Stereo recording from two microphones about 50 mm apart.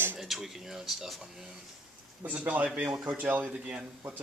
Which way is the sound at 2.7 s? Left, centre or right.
Right.